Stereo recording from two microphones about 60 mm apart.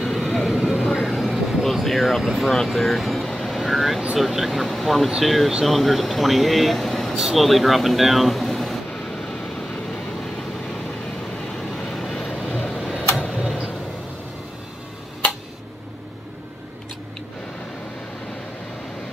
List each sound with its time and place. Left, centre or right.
0.0 s vehicle: centre
4.2 s speech: centre
9.1 s vehicle: centre
11.5 s vehicle: centre
12.4 s vehicle: centre
13.3 s tick-tock: centre